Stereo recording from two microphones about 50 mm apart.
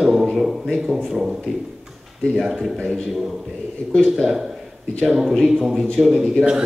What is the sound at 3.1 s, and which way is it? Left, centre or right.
A man's voice, centre.